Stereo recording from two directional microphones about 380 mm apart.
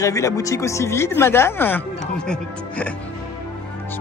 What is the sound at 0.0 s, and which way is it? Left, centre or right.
Speech, centre.